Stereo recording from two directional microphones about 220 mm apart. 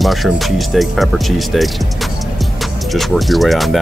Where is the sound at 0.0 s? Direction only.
Centre (ahead or behind).